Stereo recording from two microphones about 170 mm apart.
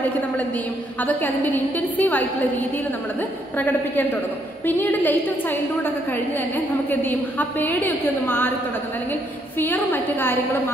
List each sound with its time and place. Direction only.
0.9 s a woman's voice: 10° left (ahead or behind)
9.6 s a woman's voice: 10° left (ahead or behind)